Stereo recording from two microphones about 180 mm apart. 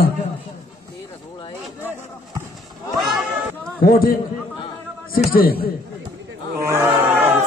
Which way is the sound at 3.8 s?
55° left (ahead or behind).